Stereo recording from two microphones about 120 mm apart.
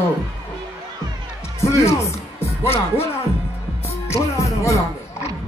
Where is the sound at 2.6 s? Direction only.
55° left (ahead or behind).